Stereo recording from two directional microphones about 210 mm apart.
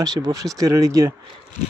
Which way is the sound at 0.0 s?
15° right (ahead or behind).